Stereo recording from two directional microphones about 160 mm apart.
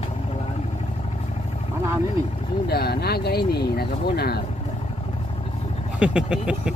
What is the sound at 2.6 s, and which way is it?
Speech, 80° left.